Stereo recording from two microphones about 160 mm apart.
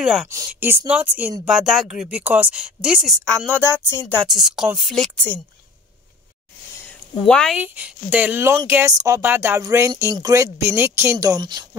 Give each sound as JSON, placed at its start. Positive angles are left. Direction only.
{"t": 0.0, "sound": "a woman's voice", "side_deg": -5}
{"t": 0.5, "sound": "a sound", "side_deg": -15}
{"t": 0.8, "sound": "a woman's voice", "side_deg": -10}
{"t": 4.1, "sound": "a woman's voice", "side_deg": 0}
{"t": 6.9, "sound": "a sound", "side_deg": 5}
{"t": 7.5, "sound": "speech", "side_deg": -10}